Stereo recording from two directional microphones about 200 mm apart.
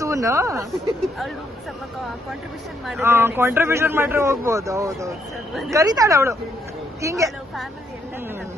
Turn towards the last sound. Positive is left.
turn(degrees=-15)  # may be behind; listen again after turning